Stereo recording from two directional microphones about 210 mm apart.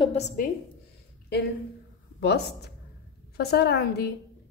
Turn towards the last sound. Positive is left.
turn(degrees=50)  # may be behind; listen again after turning